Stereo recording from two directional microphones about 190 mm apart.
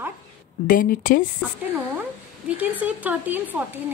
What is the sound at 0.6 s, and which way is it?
Speech, 45° left (ahead or behind).